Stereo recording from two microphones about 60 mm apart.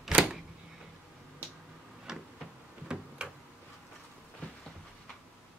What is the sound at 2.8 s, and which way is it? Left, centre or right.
Tick-tock, centre.